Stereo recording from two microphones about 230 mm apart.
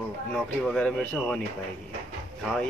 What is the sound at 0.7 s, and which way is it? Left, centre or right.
Music, centre.